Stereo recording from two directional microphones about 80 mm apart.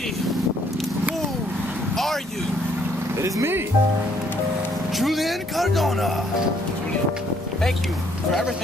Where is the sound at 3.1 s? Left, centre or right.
Right.